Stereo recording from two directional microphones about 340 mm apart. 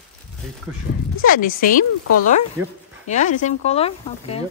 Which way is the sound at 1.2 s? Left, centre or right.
Left.